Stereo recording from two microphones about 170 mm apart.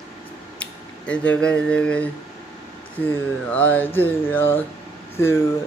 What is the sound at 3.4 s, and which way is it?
Speech, 10° left (ahead or behind).